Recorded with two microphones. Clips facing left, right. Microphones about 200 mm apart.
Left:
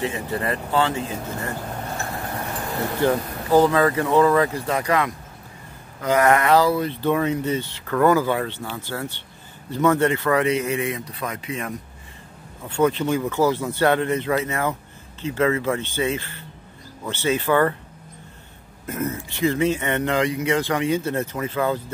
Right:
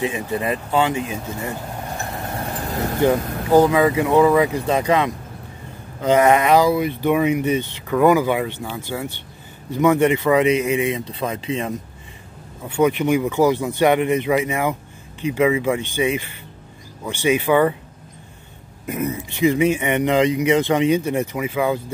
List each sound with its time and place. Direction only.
0.0 s speech: 15° right (ahead or behind)
3.0 s speech: 15° right (ahead or behind)
12.6 s speech: 15° right (ahead or behind)
18.9 s speech: 15° right (ahead or behind)